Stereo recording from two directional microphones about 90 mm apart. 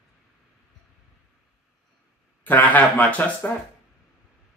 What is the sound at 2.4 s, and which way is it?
Speech, 20° left (ahead or behind).